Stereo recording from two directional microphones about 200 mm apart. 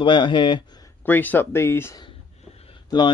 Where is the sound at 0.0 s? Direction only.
25° left (ahead or behind).